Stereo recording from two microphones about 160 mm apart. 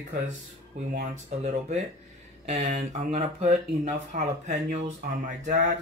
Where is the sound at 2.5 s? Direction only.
45° right (ahead or behind).